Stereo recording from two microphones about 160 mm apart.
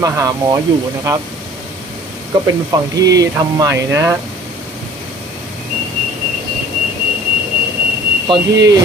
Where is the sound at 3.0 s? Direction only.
25° right (ahead or behind).